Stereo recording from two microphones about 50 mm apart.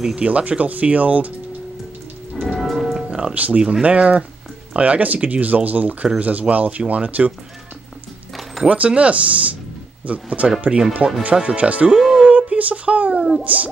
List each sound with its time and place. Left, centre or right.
0.0 s speech: right
2.6 s music: centre
3.1 s music: centre
3.3 s speech: right
8.6 s speech: right
12.2 s a sound: right
13.4 s speech: right